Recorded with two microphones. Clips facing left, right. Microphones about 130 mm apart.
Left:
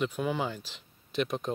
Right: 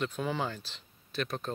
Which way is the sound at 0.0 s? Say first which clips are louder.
Left 2 dB; 10° left (ahead or behind).